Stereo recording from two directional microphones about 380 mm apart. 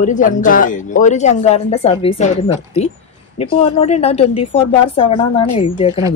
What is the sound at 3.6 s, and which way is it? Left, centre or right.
Speech, centre.